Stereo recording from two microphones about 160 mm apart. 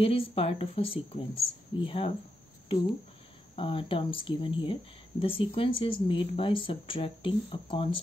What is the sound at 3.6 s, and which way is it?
Speech, 30° left (ahead or behind).